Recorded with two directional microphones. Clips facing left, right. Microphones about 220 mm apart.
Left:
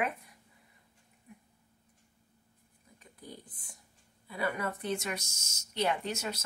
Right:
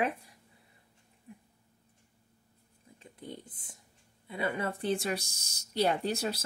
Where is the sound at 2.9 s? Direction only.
25° right (ahead or behind).